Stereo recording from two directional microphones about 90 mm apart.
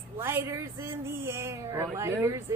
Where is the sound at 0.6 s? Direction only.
30° right (ahead or behind).